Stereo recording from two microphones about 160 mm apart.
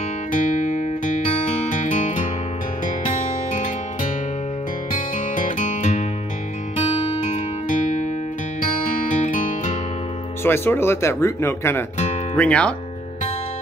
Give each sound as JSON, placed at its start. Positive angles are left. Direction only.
{"t": 0.3, "sound": "music", "side_deg": 55}
{"t": 5.1, "sound": "music", "side_deg": 55}
{"t": 7.3, "sound": "music", "side_deg": 55}
{"t": 9.1, "sound": "music", "side_deg": 50}
{"t": 10.4, "sound": "speech", "side_deg": 15}